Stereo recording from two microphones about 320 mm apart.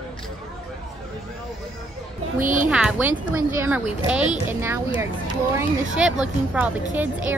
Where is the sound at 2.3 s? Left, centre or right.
Right.